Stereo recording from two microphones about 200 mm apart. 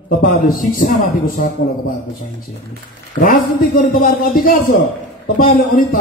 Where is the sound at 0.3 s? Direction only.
40° left (ahead or behind).